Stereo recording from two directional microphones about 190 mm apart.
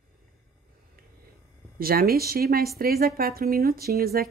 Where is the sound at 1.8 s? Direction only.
50° right (ahead or behind).